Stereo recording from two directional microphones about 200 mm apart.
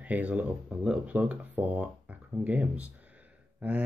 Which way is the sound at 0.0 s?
5° right (ahead or behind).